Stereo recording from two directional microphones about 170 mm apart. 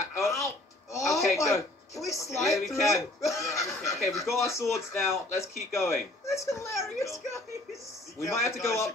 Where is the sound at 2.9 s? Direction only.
20° left (ahead or behind).